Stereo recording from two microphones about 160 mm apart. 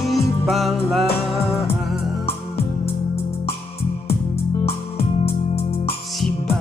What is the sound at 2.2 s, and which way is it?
Music, 40° left (ahead or behind).